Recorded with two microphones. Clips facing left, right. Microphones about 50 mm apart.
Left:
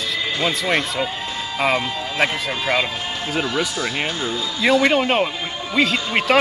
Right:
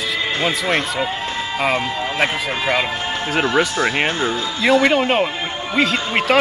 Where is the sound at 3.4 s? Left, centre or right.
Right.